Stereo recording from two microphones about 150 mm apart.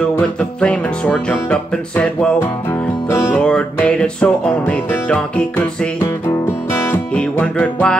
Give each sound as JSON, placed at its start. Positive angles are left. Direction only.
{"t": 0.0, "sound": "music", "side_deg": 5}
{"t": 6.2, "sound": "music", "side_deg": 15}